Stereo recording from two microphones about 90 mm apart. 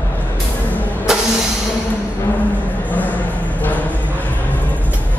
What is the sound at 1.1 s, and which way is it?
Vehicle, 5° right (ahead or behind).